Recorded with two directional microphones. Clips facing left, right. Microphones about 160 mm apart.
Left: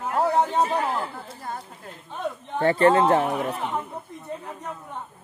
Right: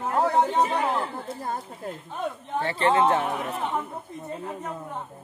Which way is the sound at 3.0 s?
35° left (ahead or behind).